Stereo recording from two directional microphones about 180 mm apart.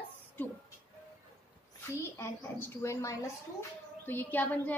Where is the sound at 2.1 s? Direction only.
15° left (ahead or behind).